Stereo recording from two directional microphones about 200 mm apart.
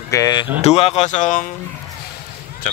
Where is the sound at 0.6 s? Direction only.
30° left (ahead or behind).